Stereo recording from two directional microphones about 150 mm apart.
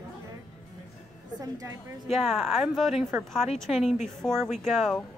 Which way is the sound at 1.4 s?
25° right (ahead or behind).